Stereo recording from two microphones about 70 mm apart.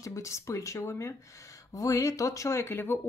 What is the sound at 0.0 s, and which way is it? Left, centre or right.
Speech, left.